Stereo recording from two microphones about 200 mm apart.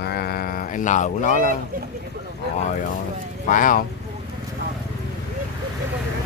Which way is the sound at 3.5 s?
40° left (ahead or behind).